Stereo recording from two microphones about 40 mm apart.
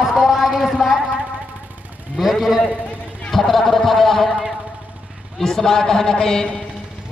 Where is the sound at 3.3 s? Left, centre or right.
Centre.